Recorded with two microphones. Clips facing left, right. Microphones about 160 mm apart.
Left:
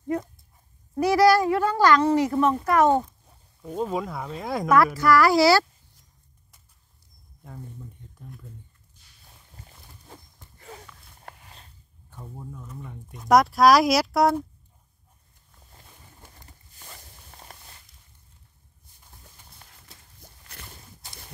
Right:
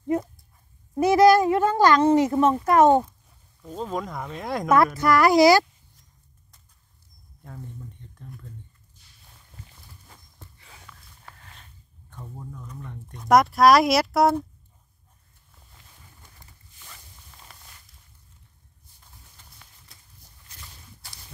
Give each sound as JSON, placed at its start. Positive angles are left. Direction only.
{"t": 0.9, "sound": "a child's voice", "side_deg": -20}
{"t": 3.6, "sound": "speech", "side_deg": 10}
{"t": 4.9, "sound": "a child's voice", "side_deg": -20}
{"t": 7.4, "sound": "a sound", "side_deg": 5}
{"t": 10.9, "sound": "a sound", "side_deg": 0}
{"t": 12.1, "sound": "speech", "side_deg": 10}
{"t": 16.7, "sound": "walk", "side_deg": 45}